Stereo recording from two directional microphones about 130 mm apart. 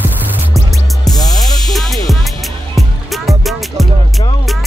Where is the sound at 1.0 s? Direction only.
30° left (ahead or behind).